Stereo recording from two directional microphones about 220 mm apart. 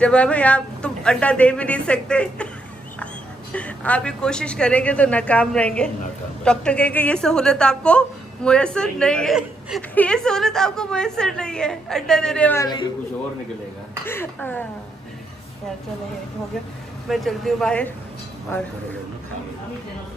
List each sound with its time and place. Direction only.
0.0 s a woman's voice: 5° left (ahead or behind)
3.5 s a woman's voice: 5° left (ahead or behind)
12.6 s a man's voice: 20° left (ahead or behind)
14.0 s speech: 10° left (ahead or behind)
17.1 s a woman's voice: centre (ahead or behind)